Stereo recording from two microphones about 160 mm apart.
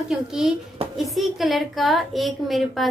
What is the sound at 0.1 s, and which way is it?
Speech, centre (ahead or behind).